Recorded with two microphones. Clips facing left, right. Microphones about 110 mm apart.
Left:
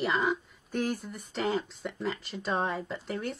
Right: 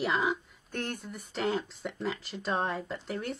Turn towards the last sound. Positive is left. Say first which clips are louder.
# left 1 dB
turn(degrees=0)  # may be behind; listen again after turning